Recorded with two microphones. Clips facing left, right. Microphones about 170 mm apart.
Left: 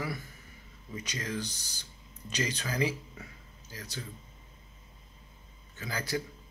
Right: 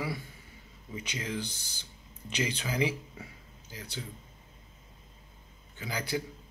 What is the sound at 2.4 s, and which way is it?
Speech, 10° right (ahead or behind).